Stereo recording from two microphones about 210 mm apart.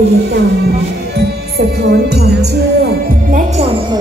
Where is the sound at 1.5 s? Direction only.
50° right (ahead or behind).